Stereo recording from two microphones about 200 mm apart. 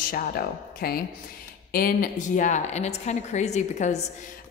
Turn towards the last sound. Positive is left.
turn(degrees=35)  # may be behind; listen again after turning